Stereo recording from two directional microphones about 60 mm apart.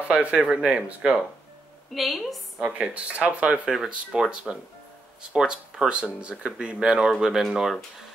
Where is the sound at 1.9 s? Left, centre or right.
Centre.